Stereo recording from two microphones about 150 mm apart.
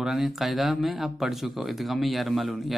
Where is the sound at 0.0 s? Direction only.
5° right (ahead or behind).